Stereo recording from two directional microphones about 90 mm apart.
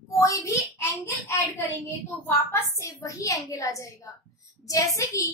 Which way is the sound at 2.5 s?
30° left (ahead or behind).